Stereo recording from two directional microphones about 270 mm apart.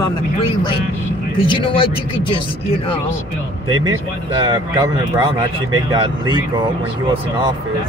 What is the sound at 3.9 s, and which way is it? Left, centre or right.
Speech, centre.